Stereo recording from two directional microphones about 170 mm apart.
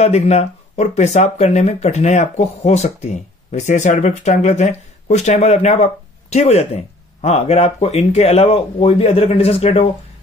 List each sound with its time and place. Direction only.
0.0 s speech: 40° left (ahead or behind)